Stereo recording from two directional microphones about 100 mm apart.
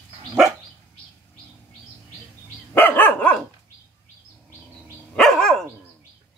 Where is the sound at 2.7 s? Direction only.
20° left (ahead or behind).